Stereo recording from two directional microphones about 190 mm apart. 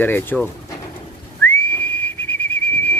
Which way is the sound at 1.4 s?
10° left (ahead or behind).